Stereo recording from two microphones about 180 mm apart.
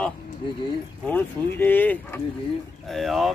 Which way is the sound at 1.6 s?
10° left (ahead or behind).